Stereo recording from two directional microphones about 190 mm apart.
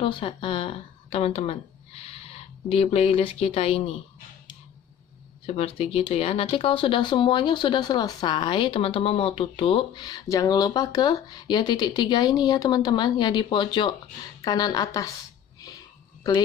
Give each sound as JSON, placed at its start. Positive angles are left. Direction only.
{"t": 0.0, "sound": "speech", "side_deg": 25}
{"t": 5.6, "sound": "speech", "side_deg": 30}